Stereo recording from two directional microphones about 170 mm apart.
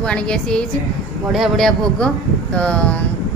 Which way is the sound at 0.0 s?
5° left (ahead or behind).